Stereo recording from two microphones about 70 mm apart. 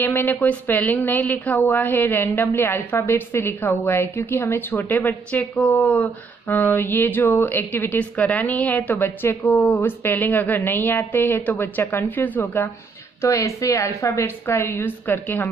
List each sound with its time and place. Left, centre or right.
0.0 s a woman's voice: left
6.5 s a woman's voice: left
8.9 s speech: left
9.7 s a woman's voice: left
13.2 s speech: left
13.8 s a woman's voice: left